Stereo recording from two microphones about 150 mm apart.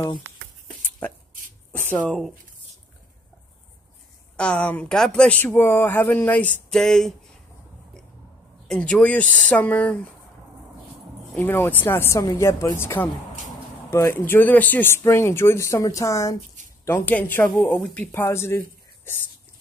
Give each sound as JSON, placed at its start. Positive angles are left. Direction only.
{"t": 1.7, "sound": "speech", "side_deg": 10}
{"t": 4.4, "sound": "speech", "side_deg": 10}
{"t": 8.6, "sound": "speech", "side_deg": 5}
{"t": 11.3, "sound": "speech", "side_deg": 15}